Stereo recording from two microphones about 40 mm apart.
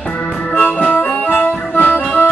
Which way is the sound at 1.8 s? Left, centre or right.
Left.